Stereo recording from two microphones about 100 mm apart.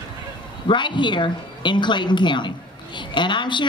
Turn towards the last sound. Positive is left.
turn(degrees=50)  # may be behind; listen again after turning